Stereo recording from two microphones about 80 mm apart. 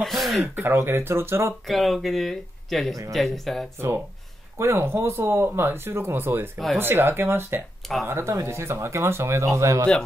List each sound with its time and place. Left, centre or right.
0.0 s speech: centre
0.6 s speech: right
1.7 s speech: centre
4.6 s speech: right